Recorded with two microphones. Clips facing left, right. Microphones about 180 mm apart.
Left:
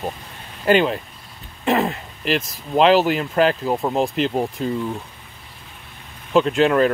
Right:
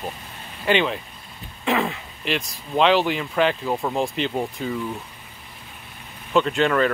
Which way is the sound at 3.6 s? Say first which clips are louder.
Left 3 dB; 20° left (ahead or behind).